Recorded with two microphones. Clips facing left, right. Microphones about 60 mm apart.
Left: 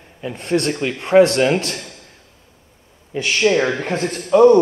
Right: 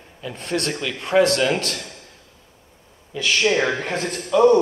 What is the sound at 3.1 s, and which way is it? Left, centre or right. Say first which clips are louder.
Speech: left 3 dB; left.